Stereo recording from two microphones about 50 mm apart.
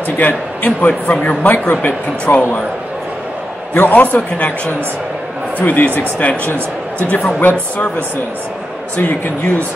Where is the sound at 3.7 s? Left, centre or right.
Left.